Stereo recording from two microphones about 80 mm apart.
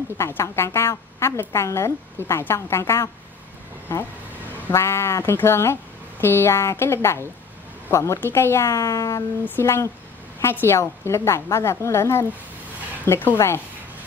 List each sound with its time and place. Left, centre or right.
0.3 s a woman's voice: left
4.7 s a woman's voice: left